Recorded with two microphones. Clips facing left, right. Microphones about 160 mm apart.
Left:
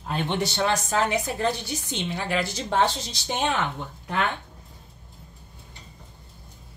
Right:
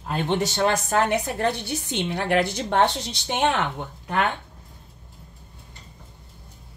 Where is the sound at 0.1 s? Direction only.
40° right (ahead or behind); by 3.4 s 65° right (ahead or behind).